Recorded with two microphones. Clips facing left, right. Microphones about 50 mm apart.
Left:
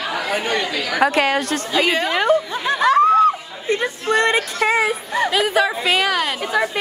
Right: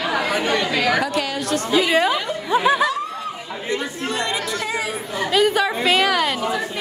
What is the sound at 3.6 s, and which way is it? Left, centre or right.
Speech, left.